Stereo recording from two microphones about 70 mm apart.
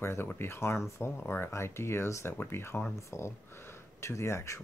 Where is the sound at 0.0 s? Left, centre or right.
Left.